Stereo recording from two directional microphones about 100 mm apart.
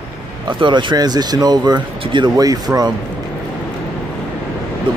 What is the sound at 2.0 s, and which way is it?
Speech, 55° right (ahead or behind).